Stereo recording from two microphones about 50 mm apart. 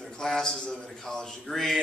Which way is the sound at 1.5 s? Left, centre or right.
Centre.